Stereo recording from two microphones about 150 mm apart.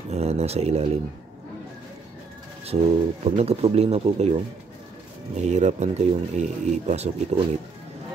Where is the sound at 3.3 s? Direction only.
45° right (ahead or behind).